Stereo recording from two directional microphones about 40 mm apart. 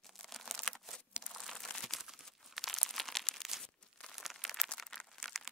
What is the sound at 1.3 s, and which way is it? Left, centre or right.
Crumpling, centre.